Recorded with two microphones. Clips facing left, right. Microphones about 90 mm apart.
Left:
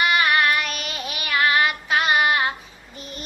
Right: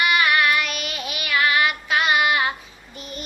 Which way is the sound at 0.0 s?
35° left (ahead or behind).